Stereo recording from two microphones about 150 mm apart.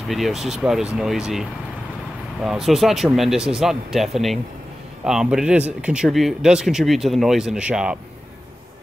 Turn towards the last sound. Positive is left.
turn(degrees=-5)  # may be behind; listen again after turning